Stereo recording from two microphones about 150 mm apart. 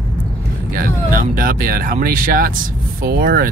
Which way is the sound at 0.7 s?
70° right (ahead or behind).